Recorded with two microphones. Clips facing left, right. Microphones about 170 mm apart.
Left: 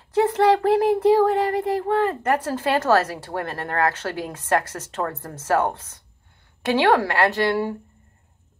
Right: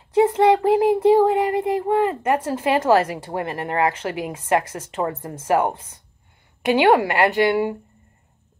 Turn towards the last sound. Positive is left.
turn(degrees=-15)  # may be behind; listen again after turning